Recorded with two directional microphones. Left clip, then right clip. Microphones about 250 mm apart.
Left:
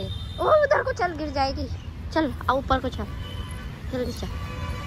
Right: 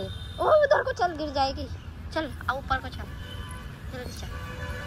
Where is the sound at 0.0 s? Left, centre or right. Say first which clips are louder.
Left 1 dB; centre.